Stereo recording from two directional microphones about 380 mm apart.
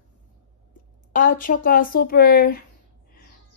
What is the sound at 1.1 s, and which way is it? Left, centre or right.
A woman's voice, left.